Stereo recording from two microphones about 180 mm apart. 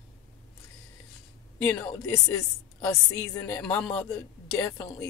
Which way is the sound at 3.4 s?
10° left (ahead or behind).